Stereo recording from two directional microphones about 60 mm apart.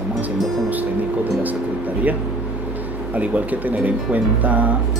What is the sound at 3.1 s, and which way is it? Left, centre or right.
Speech, right.